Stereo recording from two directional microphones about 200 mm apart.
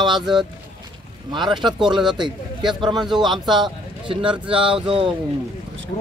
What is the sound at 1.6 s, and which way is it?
Speech, centre (ahead or behind).